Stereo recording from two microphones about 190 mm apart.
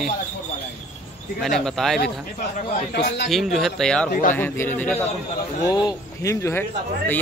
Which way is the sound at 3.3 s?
Centre (ahead or behind).